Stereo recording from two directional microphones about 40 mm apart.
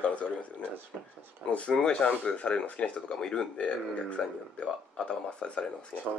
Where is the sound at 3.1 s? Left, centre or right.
Centre.